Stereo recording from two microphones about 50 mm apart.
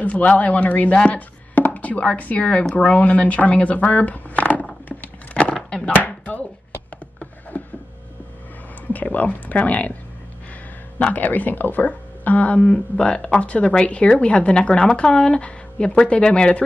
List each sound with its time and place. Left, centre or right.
0.0 s speech: left
4.8 s a sound: left
5.6 s chopping: centre
6.0 s speech: left
7.5 s a sound: left
8.9 s speech: left
11.0 s speech: left